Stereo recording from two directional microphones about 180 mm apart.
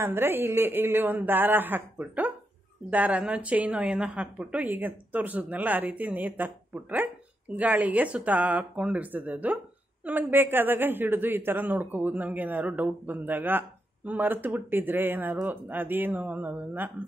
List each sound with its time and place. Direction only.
0.0 s a woman's voice: 10° right (ahead or behind)